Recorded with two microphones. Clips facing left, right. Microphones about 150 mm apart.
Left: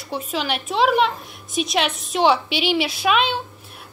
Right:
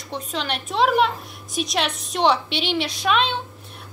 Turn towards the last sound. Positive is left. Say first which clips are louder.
# left 2 dB
turn(degrees=5)  # may be behind; listen again after turning